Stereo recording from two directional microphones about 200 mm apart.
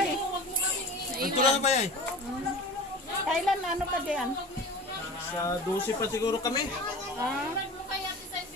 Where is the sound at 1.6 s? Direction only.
35° left (ahead or behind).